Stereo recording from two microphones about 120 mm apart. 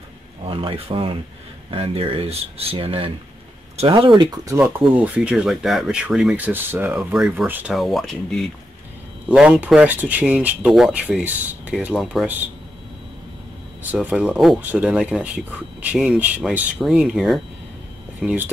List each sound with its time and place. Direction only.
0.5 s speech: 50° right (ahead or behind)
4.6 s speech: 20° right (ahead or behind)
7.7 s speech: centre (ahead or behind)
9.3 s speech: 10° right (ahead or behind)
14.0 s speech: 10° right (ahead or behind)